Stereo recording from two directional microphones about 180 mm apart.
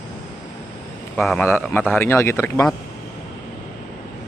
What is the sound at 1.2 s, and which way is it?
Speech, centre (ahead or behind).